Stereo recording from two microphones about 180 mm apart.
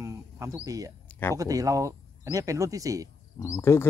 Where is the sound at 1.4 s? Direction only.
20° right (ahead or behind).